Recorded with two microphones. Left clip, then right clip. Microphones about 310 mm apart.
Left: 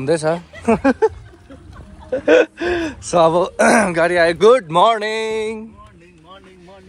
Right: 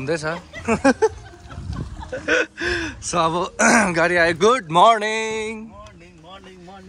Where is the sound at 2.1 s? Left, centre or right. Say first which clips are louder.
Left 8 dB; centre.